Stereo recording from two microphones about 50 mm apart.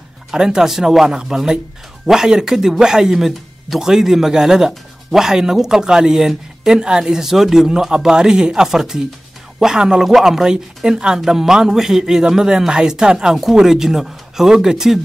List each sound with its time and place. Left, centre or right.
0.3 s a man's voice: centre